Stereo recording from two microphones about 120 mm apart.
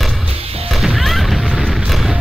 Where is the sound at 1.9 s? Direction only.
Centre (ahead or behind).